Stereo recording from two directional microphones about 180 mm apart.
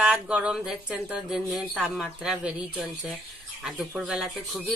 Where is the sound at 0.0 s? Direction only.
5° right (ahead or behind).